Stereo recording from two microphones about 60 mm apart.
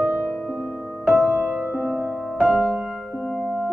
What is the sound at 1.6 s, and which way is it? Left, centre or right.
Music, right.